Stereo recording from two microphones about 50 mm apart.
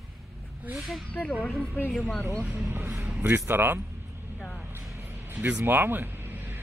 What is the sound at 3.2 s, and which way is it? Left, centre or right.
Speech, right.